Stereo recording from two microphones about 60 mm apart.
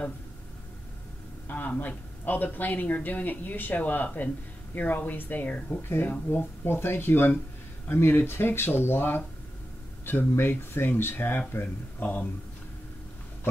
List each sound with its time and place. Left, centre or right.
1.8 s speech: left